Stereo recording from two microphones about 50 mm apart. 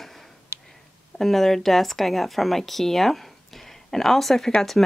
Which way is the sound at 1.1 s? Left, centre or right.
Centre.